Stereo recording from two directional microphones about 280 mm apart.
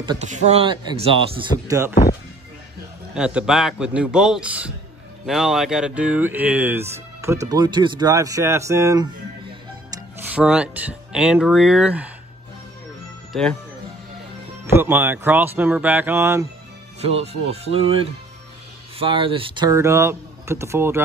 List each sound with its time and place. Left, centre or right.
0.0 s speech: centre
3.2 s a man's voice: centre
13.3 s speech: centre
14.7 s speech: centre
17.0 s speech: right